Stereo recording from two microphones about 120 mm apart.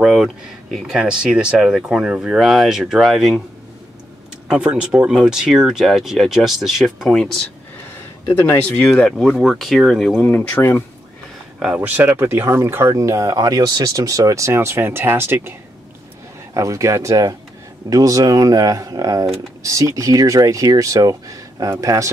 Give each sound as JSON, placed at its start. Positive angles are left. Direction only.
{"t": 0.0, "sound": "speech", "side_deg": -5}
{"t": 4.5, "sound": "speech", "side_deg": -10}
{"t": 9.4, "sound": "speech", "side_deg": 0}
{"t": 10.3, "sound": "speech", "side_deg": 10}
{"t": 11.6, "sound": "speech", "side_deg": -10}
{"t": 16.5, "sound": "speech", "side_deg": -25}